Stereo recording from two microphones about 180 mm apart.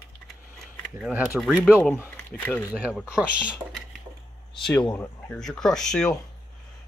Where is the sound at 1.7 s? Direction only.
10° left (ahead or behind).